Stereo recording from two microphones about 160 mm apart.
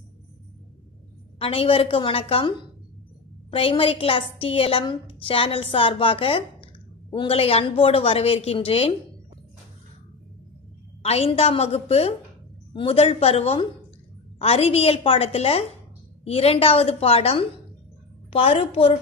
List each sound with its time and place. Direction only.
1.4 s a woman's voice: 35° left (ahead or behind)
11.0 s a woman's voice: 40° left (ahead or behind)